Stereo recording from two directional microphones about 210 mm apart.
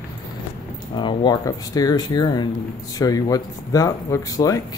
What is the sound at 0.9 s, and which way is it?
Speech, 20° left (ahead or behind).